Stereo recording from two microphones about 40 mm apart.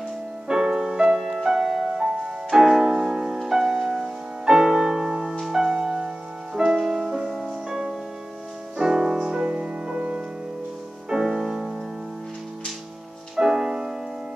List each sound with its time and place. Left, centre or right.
0.5 s music: centre
2.0 s music: right
6.6 s music: centre; by 10.2 s right
11.1 s music: centre
13.4 s music: centre